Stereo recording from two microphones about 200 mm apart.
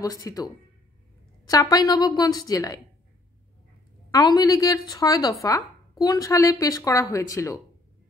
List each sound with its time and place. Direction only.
0.0 s speech: 20° left (ahead or behind)
1.5 s speech: 20° left (ahead or behind)
4.1 s speech: 20° left (ahead or behind)